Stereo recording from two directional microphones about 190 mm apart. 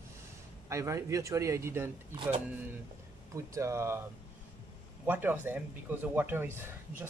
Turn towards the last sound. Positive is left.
turn(degrees=-10)  # may be behind; listen again after turning